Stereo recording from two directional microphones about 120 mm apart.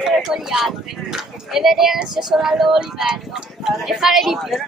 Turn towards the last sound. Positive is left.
turn(degrees=0)  # may be behind; listen again after turning